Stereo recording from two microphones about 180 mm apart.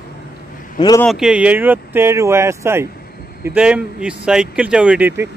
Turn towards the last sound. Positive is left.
turn(degrees=-10)  # may be behind; listen again after turning